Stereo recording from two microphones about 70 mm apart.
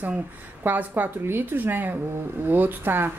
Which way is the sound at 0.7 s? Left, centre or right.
Right.